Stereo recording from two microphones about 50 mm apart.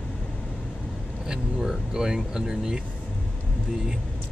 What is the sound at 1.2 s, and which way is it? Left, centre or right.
Speech, centre.